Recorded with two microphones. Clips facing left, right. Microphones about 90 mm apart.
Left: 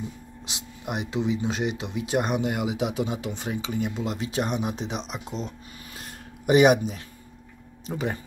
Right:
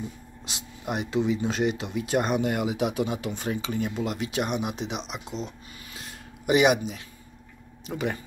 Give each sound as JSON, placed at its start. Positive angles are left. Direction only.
{"t": 0.5, "sound": "speech", "side_deg": 20}
{"t": 4.0, "sound": "speech", "side_deg": 30}
{"t": 5.9, "sound": "a sound", "side_deg": 45}
{"t": 7.8, "sound": "speech", "side_deg": 30}